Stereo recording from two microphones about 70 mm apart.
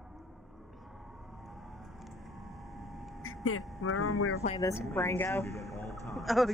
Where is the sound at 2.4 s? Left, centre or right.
Centre.